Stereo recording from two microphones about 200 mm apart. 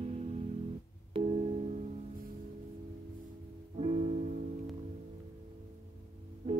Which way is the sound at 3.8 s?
35° right (ahead or behind).